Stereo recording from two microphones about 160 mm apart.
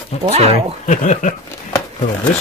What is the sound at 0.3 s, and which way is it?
Speech, 40° right (ahead or behind).